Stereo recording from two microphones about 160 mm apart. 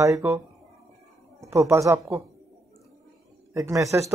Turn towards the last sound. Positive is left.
turn(degrees=-20)  # may be behind; listen again after turning